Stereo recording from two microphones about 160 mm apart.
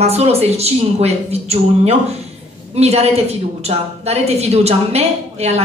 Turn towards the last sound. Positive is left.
turn(degrees=-40)  # may be behind; listen again after turning